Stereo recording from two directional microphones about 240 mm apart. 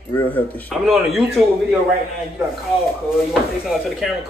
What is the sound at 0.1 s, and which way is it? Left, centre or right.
A man's voice, centre.